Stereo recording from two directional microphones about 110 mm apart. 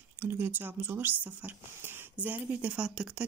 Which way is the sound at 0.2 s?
20° right (ahead or behind).